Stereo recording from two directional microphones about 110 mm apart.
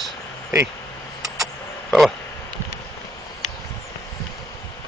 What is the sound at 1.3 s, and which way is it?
Power windows, centre (ahead or behind).